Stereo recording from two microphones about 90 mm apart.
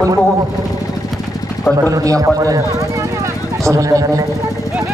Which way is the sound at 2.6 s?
35° right (ahead or behind).